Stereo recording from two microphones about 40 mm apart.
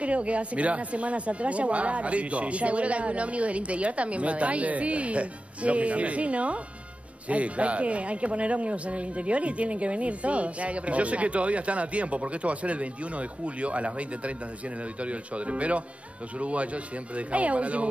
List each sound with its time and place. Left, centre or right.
0.0 s a man's voice: right